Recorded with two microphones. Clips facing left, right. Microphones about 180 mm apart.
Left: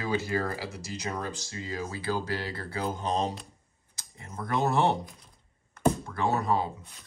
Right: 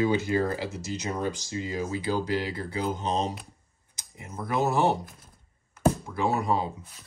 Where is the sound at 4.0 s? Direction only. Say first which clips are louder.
Right 2 dB; 10° right (ahead or behind).